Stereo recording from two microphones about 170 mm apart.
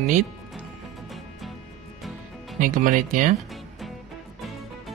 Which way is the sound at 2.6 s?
50° right (ahead or behind).